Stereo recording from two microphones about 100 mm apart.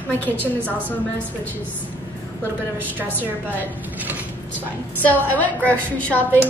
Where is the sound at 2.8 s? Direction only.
20° right (ahead or behind).